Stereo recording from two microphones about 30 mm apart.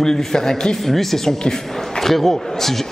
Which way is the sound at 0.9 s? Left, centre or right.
Centre.